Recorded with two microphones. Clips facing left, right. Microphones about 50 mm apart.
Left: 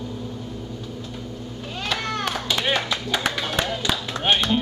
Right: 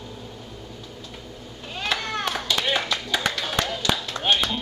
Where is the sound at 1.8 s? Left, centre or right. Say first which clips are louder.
Even; centre.